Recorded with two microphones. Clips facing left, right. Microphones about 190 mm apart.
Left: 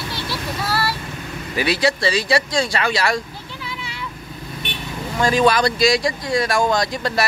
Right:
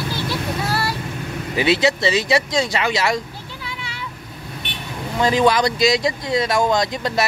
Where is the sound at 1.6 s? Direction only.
20° right (ahead or behind).